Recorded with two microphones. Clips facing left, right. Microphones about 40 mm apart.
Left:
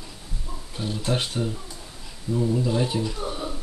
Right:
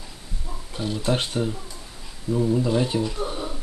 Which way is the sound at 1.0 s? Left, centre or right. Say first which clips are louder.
Right 2 dB; centre.